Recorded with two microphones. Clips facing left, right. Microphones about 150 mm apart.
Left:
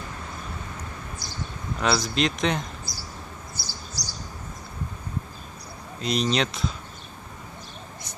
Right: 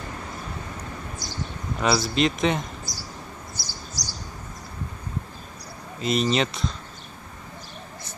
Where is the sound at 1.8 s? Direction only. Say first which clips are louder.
Right 2 dB; centre (ahead or behind).